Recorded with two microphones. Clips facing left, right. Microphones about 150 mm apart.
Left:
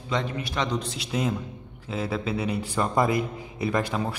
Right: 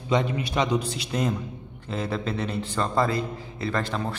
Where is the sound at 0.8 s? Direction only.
Centre (ahead or behind).